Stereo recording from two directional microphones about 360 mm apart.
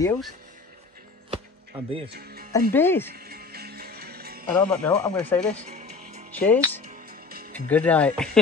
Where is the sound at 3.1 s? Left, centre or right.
Right.